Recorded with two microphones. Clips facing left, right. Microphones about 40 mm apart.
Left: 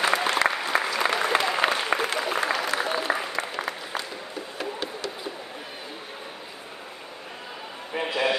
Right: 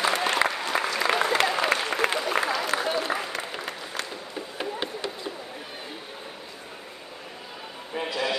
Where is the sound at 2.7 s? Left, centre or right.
Centre.